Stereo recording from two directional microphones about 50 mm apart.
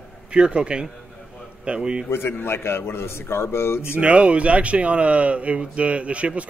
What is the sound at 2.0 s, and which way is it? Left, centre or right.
A man's voice, left.